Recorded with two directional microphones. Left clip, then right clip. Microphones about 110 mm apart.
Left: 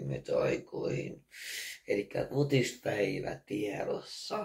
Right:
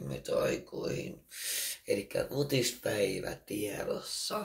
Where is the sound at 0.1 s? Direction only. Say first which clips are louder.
Left 1 dB; 40° right (ahead or behind).